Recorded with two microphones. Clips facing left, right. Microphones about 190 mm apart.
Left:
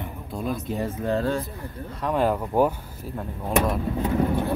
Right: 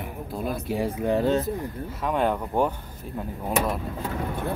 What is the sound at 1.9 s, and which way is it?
Speech, centre (ahead or behind).